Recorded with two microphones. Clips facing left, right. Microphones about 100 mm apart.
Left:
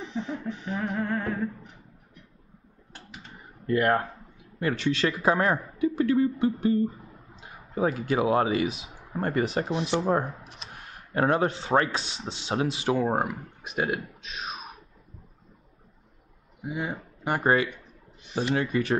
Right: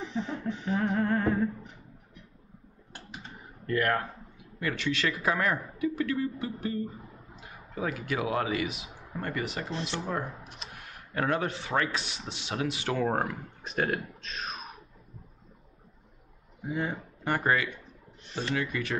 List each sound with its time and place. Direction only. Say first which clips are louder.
0.0 s music: left 1 dB; centre (ahead or behind)
3.6 s speech: left 4 dB; 25° left (ahead or behind)
10.3 s a sound: even; centre (ahead or behind)
10.7 s speech: left 8 dB; 30° left (ahead or behind)
13.1 s speech: left 3 dB; 10° left (ahead or behind)
16.6 s speech: even; centre (ahead or behind)
17.4 s speech: left 5 dB; 30° left (ahead or behind)
18.2 s speech: left 6 dB; 10° left (ahead or behind)
18.5 s speech: left 6 dB; 35° left (ahead or behind)